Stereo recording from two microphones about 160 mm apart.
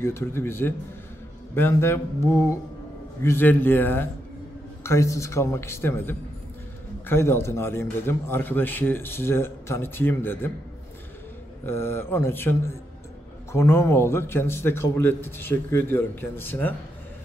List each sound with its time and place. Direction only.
0.0 s speech: 15° left (ahead or behind)
11.6 s speech: 15° left (ahead or behind)